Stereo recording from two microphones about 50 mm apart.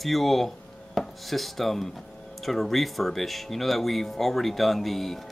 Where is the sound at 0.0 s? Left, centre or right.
Centre.